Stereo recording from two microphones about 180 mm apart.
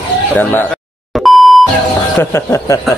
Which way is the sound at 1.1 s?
Centre (ahead or behind).